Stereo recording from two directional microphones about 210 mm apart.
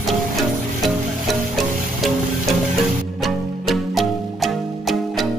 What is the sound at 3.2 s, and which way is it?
Music, centre (ahead or behind).